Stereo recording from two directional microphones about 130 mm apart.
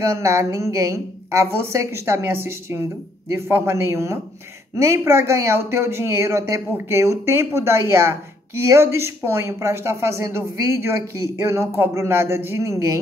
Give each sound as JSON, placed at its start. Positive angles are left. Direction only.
{"t": 0.0, "sound": "speech", "side_deg": -20}